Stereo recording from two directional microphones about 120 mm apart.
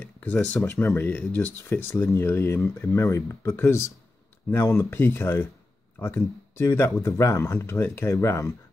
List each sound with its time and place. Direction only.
0.0 s speech: 10° left (ahead or behind)